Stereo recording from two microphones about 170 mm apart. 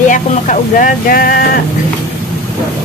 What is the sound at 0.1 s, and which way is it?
Speech, 50° left (ahead or behind).